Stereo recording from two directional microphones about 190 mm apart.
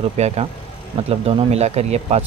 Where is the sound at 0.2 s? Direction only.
35° right (ahead or behind).